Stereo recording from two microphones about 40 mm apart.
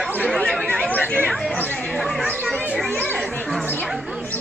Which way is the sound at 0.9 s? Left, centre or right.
Left.